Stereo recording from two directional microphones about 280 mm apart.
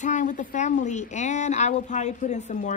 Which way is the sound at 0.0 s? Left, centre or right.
Left.